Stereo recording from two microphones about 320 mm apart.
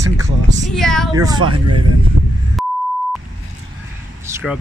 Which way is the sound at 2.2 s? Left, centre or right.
Right.